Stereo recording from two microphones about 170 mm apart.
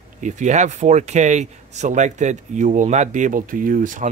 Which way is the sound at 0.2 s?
45° right (ahead or behind).